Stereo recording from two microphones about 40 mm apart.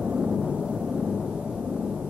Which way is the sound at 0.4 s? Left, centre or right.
Centre.